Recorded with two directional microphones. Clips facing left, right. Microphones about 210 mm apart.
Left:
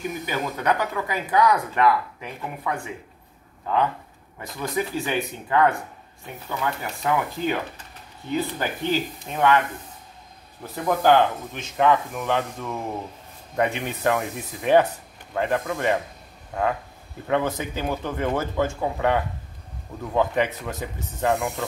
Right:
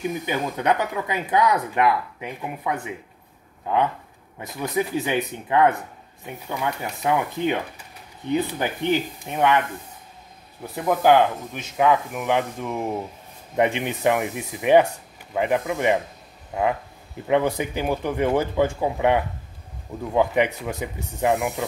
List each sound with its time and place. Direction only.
0.3 s speech: 20° right (ahead or behind)
4.4 s speech: 20° right (ahead or behind)
10.7 s speech: 15° right (ahead or behind)